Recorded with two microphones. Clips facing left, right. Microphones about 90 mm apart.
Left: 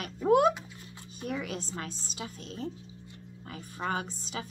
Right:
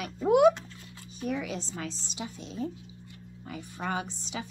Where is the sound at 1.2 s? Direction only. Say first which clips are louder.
Right 2 dB; 50° left (ahead or behind).